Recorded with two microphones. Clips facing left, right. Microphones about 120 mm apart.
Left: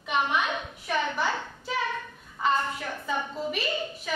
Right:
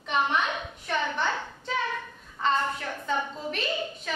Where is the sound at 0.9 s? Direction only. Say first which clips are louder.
Left 1 dB; 5° left (ahead or behind).